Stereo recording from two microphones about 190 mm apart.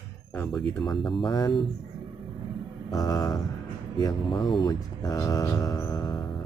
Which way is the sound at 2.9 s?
20° left (ahead or behind).